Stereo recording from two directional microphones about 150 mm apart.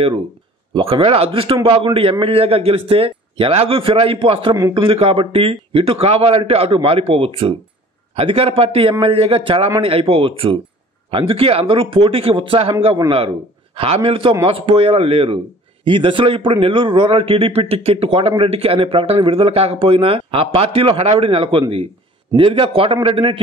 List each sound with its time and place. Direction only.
0.7 s a man's voice: 35° right (ahead or behind)
13.7 s a man's voice: 40° right (ahead or behind)